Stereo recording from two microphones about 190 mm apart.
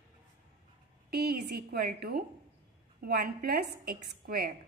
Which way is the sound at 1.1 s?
55° right (ahead or behind).